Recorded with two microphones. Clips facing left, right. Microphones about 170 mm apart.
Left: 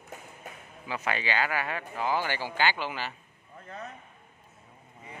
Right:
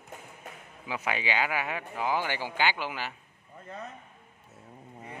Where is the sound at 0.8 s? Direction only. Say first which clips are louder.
Even; 10° right (ahead or behind).